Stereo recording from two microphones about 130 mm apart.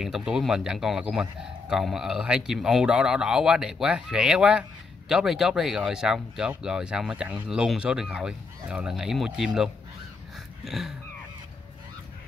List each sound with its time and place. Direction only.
0.0 s a man's voice: 5° right (ahead or behind)